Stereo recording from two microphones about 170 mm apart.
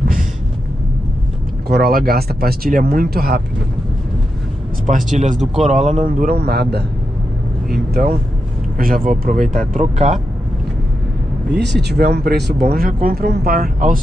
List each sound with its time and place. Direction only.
1.7 s speech: 65° right (ahead or behind)
4.8 s speech: 45° right (ahead or behind); by 6.8 s 70° right (ahead or behind)
7.7 s speech: 60° right (ahead or behind)
11.9 s speech: 65° right (ahead or behind)